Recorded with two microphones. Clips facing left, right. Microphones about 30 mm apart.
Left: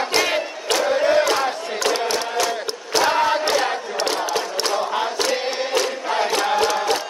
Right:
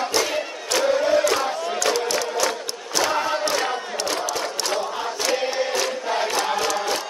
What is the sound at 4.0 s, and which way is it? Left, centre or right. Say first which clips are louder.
Battle cry: left 4 dB; left.